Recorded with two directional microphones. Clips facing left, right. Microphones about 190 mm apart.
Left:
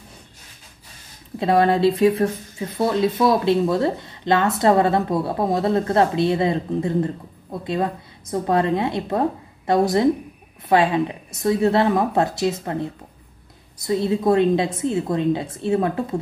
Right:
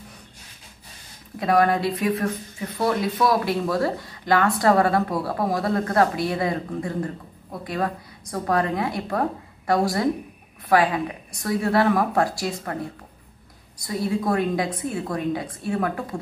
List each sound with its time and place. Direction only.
1.4 s speech: 25° left (ahead or behind)